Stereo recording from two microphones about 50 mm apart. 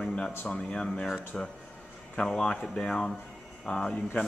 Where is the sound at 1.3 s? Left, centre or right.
Left.